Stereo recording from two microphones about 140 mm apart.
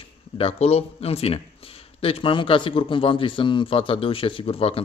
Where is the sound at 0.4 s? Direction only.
45° left (ahead or behind).